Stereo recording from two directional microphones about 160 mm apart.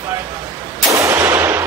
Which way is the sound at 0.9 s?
20° right (ahead or behind).